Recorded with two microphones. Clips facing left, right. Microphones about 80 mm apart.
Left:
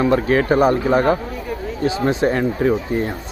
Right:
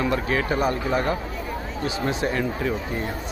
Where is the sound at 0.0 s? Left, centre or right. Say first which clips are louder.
Left 7 dB; left.